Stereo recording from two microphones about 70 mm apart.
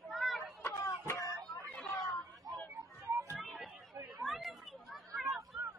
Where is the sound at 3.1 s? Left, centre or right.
Right.